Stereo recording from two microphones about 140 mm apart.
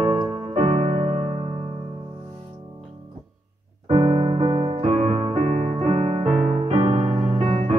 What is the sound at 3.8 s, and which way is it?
Keyboard, 45° right (ahead or behind).